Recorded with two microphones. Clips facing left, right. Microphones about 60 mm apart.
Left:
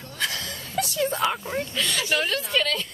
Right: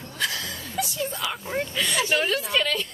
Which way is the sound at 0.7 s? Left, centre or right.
Left.